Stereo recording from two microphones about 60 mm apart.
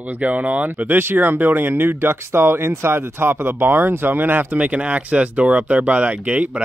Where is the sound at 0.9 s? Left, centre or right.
Right.